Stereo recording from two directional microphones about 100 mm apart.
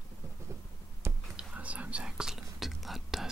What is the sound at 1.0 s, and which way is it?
Whispering, 30° right (ahead or behind).